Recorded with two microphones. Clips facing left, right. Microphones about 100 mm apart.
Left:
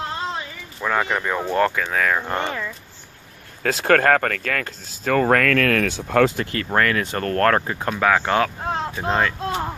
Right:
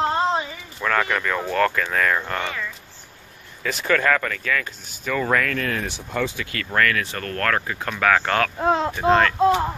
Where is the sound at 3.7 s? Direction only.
90° left.